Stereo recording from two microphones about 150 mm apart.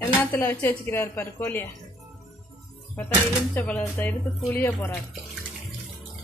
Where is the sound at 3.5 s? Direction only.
10° left (ahead or behind).